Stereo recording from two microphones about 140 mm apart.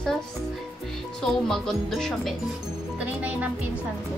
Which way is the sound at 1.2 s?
Centre (ahead or behind).